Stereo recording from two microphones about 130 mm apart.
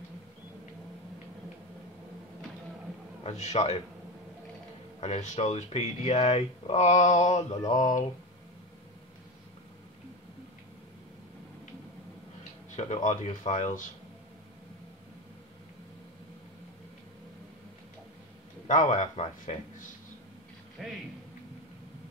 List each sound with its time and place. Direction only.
3.3 s speech: 60° left (ahead or behind)
5.0 s speech: 60° left (ahead or behind)
12.7 s speech: 60° left (ahead or behind)
18.9 s speech: 70° left (ahead or behind)
20.8 s a man's voice: centre (ahead or behind)